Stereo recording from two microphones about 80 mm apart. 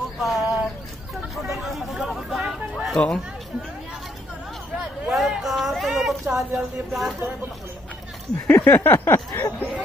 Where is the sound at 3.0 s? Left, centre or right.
Centre.